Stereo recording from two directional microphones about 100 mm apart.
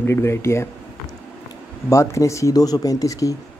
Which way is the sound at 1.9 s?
30° left (ahead or behind).